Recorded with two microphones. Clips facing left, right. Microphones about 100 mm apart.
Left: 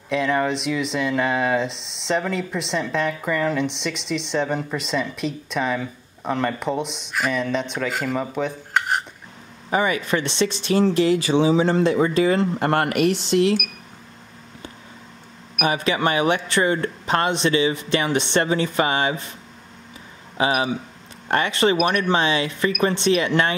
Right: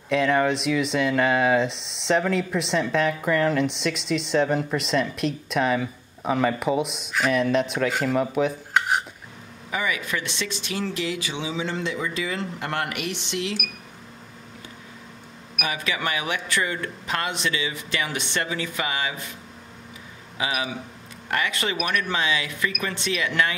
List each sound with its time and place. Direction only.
0.1 s speech: centre (ahead or behind)
9.7 s speech: 35° left (ahead or behind)
15.6 s speech: 35° left (ahead or behind)
20.3 s speech: 35° left (ahead or behind)